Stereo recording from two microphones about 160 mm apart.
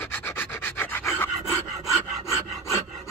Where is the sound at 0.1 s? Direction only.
15° left (ahead or behind).